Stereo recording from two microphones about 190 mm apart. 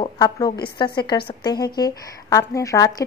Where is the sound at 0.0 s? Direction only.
20° left (ahead or behind).